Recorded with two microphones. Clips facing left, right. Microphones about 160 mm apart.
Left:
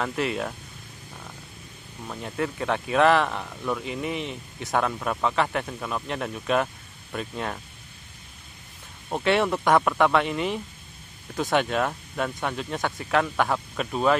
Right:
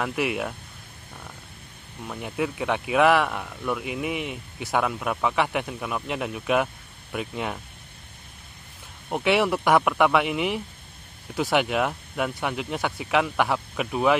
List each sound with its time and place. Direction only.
0.0 s speech: 10° right (ahead or behind)
2.0 s speech: 10° right (ahead or behind)
9.1 s speech: 10° right (ahead or behind)